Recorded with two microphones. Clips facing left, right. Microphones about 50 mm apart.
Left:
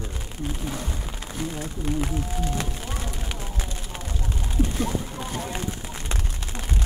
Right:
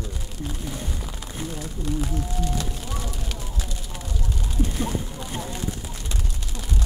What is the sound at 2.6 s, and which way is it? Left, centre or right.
Music, left.